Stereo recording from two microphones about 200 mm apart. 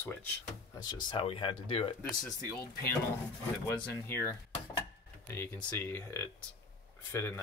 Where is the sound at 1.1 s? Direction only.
25° left (ahead or behind).